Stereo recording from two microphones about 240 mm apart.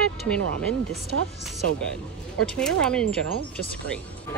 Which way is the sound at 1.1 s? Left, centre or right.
Right.